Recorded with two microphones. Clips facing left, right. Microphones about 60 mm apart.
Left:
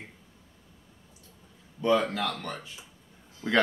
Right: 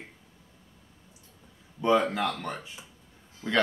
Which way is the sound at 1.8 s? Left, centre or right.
Centre.